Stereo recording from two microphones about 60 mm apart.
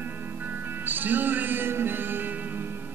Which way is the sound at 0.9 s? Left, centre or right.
Right.